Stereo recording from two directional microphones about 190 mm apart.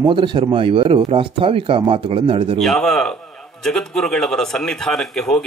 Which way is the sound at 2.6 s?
Centre (ahead or behind).